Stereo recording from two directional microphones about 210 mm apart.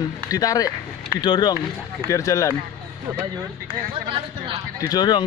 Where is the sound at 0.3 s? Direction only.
15° left (ahead or behind).